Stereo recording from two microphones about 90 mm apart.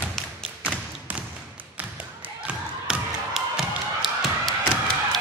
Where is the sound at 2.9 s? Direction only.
5° right (ahead or behind).